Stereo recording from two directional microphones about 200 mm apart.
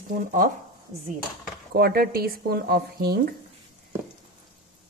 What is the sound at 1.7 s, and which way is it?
Speech, 50° right (ahead or behind).